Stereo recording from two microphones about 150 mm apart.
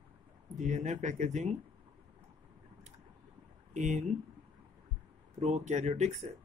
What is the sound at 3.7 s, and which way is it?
Speech, 55° right (ahead or behind).